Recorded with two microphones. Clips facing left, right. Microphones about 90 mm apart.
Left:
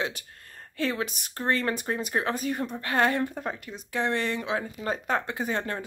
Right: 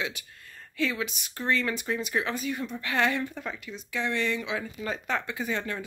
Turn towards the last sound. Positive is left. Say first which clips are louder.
# left 2 dB
turn(degrees=40)  # may be behind; listen again after turning